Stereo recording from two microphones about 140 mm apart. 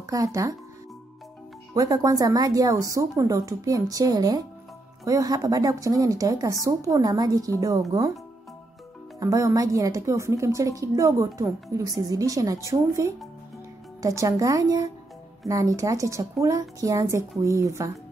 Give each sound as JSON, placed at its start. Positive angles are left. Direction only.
{"t": 0.0, "sound": "a woman's voice", "side_deg": -25}
{"t": 1.8, "sound": "a woman's voice", "side_deg": -25}
{"t": 9.2, "sound": "a woman's voice", "side_deg": -25}